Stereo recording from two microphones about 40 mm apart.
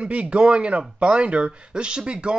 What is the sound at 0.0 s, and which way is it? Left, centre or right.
Speech, right.